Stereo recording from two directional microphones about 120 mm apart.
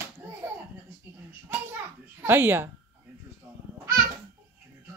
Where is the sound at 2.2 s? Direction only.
20° right (ahead or behind).